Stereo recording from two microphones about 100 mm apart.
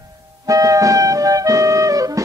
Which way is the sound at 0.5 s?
35° right (ahead or behind).